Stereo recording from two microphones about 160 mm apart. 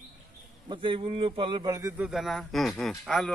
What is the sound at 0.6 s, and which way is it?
A man's voice, 30° right (ahead or behind).